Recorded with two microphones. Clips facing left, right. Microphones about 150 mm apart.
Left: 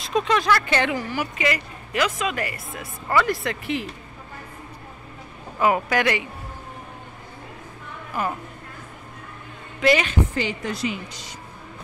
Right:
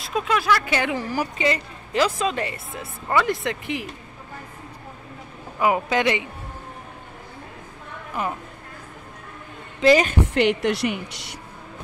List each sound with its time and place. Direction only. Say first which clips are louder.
0.0 s speech: left 2 dB; 5° right (ahead or behind)
0.9 s a woman's voice: right 1 dB; 35° right (ahead or behind); by 3.8 s 20° right (ahead or behind)
5.6 s a woman's voice: even; 20° right (ahead or behind)
8.2 s a woman's voice: left 1 dB; 15° right (ahead or behind)
9.8 s a woman's voice: right 3 dB; 30° right (ahead or behind)
10.2 s a woman's voice: right 7 dB; 70° right (ahead or behind)